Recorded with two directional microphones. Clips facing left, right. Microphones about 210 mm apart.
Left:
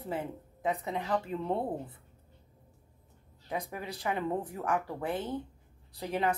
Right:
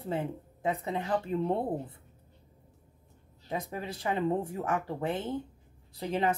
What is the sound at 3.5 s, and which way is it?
Speech, 30° right (ahead or behind).